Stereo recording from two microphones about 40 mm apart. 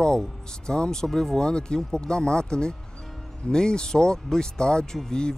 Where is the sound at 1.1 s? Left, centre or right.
Centre.